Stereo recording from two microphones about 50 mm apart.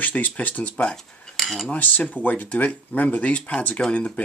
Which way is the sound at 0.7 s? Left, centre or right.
Centre.